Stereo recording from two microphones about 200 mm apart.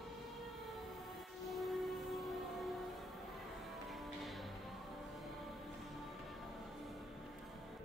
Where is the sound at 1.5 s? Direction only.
Centre (ahead or behind).